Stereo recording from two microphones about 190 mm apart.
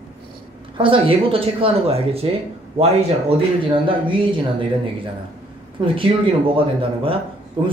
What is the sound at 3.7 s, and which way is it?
Speech, 25° right (ahead or behind).